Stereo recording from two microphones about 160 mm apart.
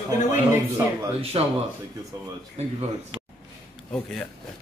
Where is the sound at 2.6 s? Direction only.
40° right (ahead or behind).